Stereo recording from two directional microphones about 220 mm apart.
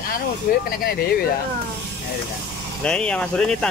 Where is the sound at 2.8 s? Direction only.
5° left (ahead or behind).